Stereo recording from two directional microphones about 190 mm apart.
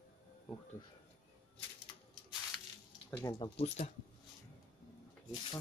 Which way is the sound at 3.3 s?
30° left (ahead or behind).